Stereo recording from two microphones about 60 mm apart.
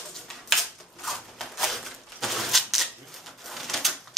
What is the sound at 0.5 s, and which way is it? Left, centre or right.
Scissors, centre.